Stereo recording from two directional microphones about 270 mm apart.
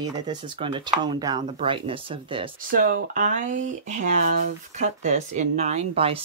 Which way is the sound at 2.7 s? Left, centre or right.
Right.